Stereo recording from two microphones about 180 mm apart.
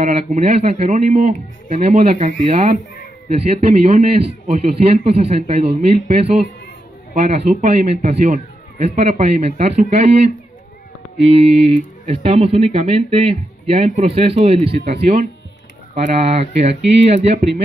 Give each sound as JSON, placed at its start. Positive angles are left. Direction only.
{"t": 0.0, "sound": "a man's voice", "side_deg": -40}
{"t": 11.2, "sound": "a man's voice", "side_deg": -35}